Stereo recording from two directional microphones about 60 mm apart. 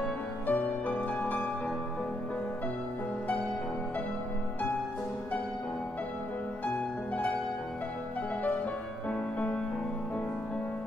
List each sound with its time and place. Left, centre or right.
0.5 s music: left
9.1 s music: left